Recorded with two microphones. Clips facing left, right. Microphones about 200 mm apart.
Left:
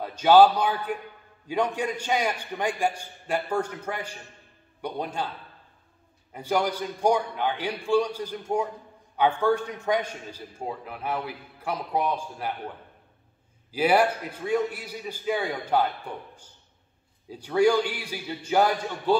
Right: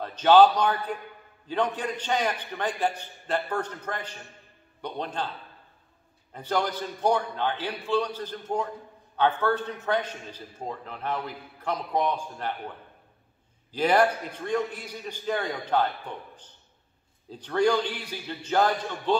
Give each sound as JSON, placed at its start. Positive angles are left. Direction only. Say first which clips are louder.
{"t": 0.0, "sound": "a man's voice", "louder": "left 1 dB", "side_deg": 10}
{"t": 6.3, "sound": "a man's voice", "louder": "left 2 dB", "side_deg": 10}
{"t": 13.7, "sound": "a man's voice", "louder": "left 1 dB", "side_deg": 10}